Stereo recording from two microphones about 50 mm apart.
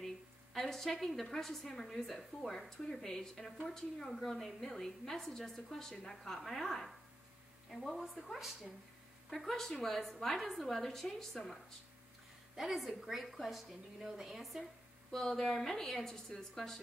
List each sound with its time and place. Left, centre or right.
0.0 s a woman's voice: centre
15.0 s a woman's voice: centre